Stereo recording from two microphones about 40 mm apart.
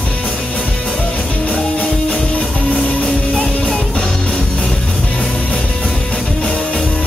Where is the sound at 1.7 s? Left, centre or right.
Centre.